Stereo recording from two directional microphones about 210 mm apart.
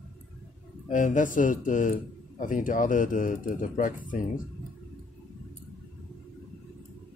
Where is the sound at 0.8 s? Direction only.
40° left (ahead or behind).